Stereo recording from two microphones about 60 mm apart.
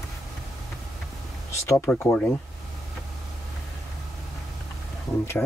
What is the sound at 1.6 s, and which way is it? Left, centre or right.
Speech, left.